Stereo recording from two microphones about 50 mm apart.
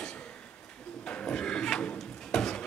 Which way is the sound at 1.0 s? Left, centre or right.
Left.